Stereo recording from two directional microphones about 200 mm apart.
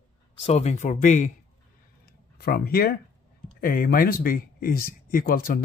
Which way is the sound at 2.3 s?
50° left (ahead or behind).